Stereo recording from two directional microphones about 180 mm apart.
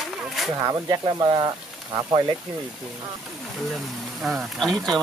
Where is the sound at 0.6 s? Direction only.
25° right (ahead or behind).